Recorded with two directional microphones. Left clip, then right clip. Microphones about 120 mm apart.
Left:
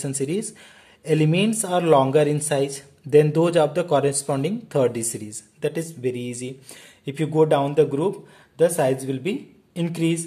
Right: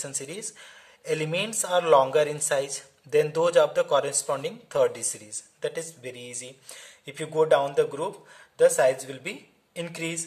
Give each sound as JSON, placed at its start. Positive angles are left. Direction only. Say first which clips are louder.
{"t": 0.0, "sound": "speech", "louder": "left 9 dB", "side_deg": 25}